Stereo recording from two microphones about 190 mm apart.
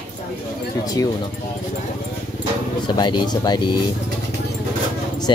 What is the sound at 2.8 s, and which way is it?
Speech, 25° left (ahead or behind).